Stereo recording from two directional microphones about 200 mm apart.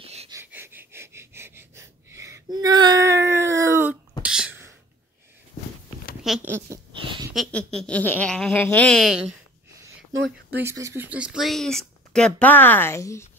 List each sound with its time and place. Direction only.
0.0 s a sound: 30° right (ahead or behind)
0.3 s wheeze: 10° right (ahead or behind)
4.2 s beatboxing: 5° right (ahead or behind)
6.2 s speech: centre (ahead or behind)
6.9 s a sound: 25° right (ahead or behind)
7.3 s speech: 5° left (ahead or behind)
10.5 s speech: 15° right (ahead or behind); by 13.3 s 15° left (ahead or behind)